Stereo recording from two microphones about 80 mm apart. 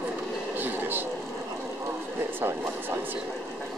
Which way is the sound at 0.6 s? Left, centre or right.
Right.